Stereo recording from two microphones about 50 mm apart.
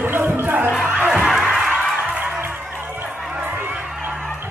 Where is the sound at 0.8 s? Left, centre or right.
Right.